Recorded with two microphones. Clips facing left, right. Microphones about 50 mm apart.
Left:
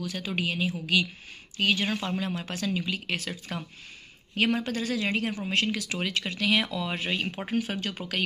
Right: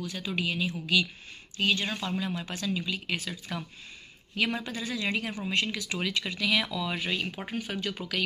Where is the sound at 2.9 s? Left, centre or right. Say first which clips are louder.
Left 1 dB; left.